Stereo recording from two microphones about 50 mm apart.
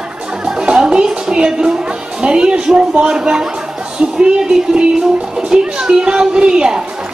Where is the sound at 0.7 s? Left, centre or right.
Centre.